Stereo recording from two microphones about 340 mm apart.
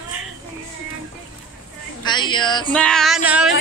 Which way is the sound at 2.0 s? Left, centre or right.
Centre.